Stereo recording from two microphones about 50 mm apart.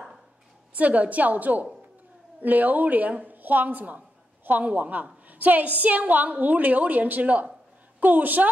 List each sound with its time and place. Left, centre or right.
0.7 s a woman's voice: right